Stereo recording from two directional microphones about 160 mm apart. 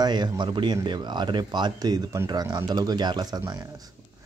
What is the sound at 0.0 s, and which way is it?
A man's voice, 25° right (ahead or behind).